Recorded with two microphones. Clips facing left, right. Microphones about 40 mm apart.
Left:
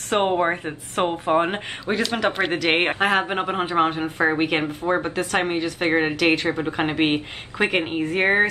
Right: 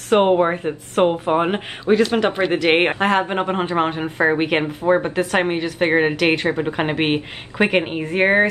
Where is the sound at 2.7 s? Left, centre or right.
Right.